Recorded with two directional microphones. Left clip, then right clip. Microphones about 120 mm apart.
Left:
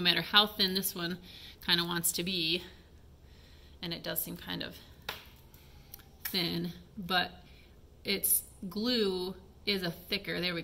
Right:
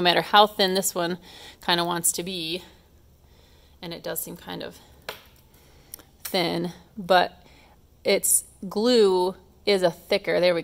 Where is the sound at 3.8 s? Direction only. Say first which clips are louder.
Right 5 dB; 40° right (ahead or behind).